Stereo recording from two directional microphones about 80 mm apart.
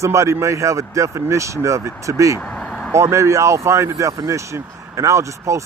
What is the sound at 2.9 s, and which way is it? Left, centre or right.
Speech, right.